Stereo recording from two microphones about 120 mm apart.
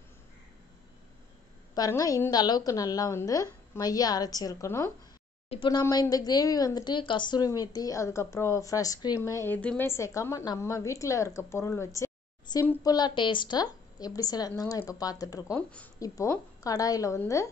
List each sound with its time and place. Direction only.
1.8 s a woman's voice: 30° left (ahead or behind)
5.7 s a woman's voice: 35° left (ahead or behind)
9.6 s speech: 10° left (ahead or behind)
9.8 s a woman's voice: 25° left (ahead or behind)
12.5 s a woman's voice: 35° left (ahead or behind)
15.5 s speech: 10° left (ahead or behind)
16.0 s a woman's voice: 30° left (ahead or behind)